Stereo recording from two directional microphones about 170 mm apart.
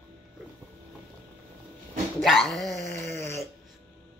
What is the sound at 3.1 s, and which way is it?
Dog, 15° left (ahead or behind).